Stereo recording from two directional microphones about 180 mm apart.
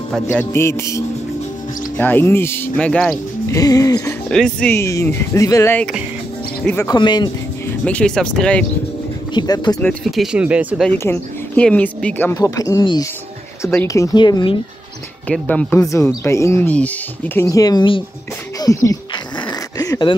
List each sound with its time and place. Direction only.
0.1 s speech: 10° left (ahead or behind)
3.4 s speech: 20° left (ahead or behind)
4.3 s speech: 5° left (ahead or behind)
4.7 s speech: 15° left (ahead or behind)
6.9 s speech: 25° left (ahead or behind)
7.8 s speech: 5° left (ahead or behind)
9.3 s speech: 20° left (ahead or behind)
9.8 s speech: 5° left (ahead or behind)
10.2 s speech: 5° right (ahead or behind)
10.9 s speech: 10° left (ahead or behind); by 14.6 s 25° left (ahead or behind)
15.2 s speech: 5° left (ahead or behind)
19.8 s dog: 25° left (ahead or behind)